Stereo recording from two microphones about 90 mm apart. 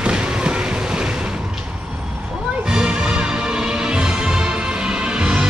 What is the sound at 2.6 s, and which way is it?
Music, 10° right (ahead or behind).